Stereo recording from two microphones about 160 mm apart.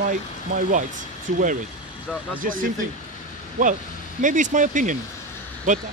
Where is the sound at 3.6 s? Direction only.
55° right (ahead or behind).